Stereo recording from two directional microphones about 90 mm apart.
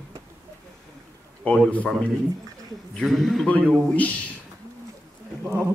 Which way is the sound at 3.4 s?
15° left (ahead or behind).